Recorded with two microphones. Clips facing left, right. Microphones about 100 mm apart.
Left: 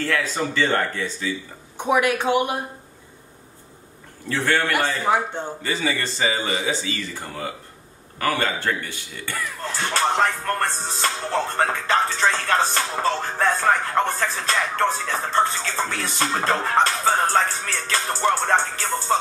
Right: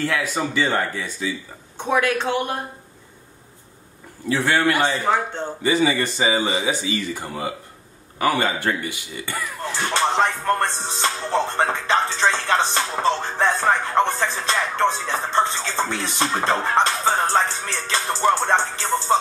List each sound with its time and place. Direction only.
0.0 s speech: 15° right (ahead or behind)
1.8 s speech: 15° left (ahead or behind)
4.3 s speech: 10° right (ahead or behind)
5.0 s speech: 10° left (ahead or behind)
5.6 s speech: 15° right (ahead or behind)
8.2 s music: 15° right (ahead or behind)